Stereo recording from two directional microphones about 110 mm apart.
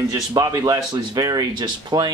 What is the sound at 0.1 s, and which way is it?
A man's voice, 30° right (ahead or behind).